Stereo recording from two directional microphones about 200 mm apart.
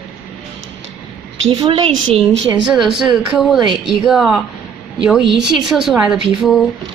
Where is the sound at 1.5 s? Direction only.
20° right (ahead or behind).